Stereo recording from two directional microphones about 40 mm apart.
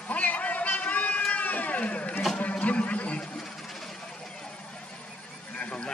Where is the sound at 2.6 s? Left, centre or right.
Left.